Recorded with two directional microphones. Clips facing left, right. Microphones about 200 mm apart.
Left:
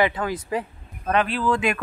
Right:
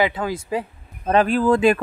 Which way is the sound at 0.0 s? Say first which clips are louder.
Right 1 dB; 10° right (ahead or behind).